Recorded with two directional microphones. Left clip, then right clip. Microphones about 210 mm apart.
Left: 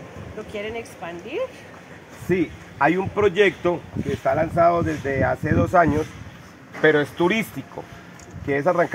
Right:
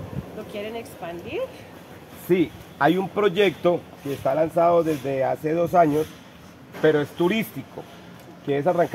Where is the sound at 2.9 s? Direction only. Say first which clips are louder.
Left 1 dB; 40° right (ahead or behind).